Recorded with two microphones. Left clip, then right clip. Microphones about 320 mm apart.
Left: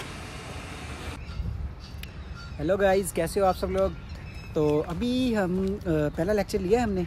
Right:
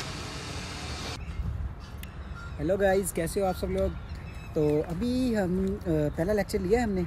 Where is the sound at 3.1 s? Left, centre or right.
Centre.